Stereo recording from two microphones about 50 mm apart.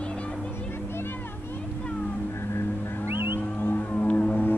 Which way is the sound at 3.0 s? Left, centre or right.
Right.